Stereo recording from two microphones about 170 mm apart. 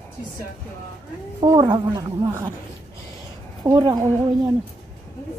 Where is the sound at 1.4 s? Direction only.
25° right (ahead or behind).